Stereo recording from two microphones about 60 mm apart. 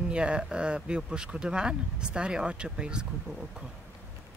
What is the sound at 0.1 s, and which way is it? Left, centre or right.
Speech, centre.